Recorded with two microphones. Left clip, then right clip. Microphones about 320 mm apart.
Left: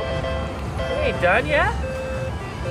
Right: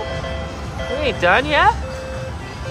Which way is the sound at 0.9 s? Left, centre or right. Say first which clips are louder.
Right 3 dB; centre.